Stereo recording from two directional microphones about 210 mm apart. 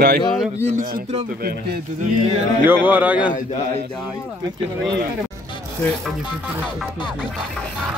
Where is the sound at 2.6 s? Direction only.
10° right (ahead or behind).